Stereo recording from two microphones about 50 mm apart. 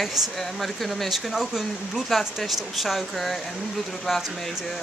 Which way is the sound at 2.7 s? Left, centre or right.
Centre.